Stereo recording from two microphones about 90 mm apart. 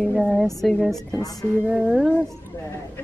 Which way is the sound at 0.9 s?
40° left (ahead or behind).